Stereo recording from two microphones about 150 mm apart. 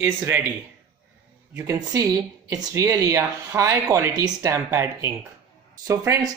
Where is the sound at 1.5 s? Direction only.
10° right (ahead or behind).